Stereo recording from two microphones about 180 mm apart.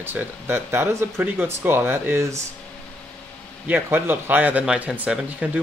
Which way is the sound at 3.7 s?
10° right (ahead or behind).